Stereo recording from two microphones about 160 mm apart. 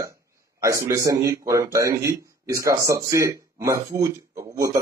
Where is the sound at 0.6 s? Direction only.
20° right (ahead or behind).